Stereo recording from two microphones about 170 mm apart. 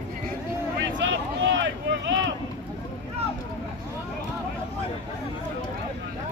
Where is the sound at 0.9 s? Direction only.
90° right.